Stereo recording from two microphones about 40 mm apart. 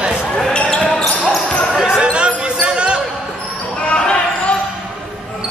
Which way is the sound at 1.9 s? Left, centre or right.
Right.